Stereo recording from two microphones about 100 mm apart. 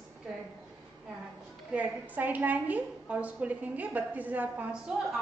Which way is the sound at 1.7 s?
15° right (ahead or behind).